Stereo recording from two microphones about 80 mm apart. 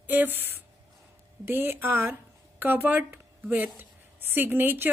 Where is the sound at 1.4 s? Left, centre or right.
Right.